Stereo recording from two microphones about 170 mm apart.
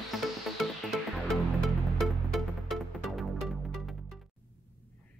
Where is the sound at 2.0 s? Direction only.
Centre (ahead or behind).